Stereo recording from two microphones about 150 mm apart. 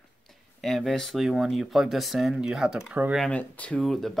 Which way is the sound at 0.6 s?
Centre (ahead or behind).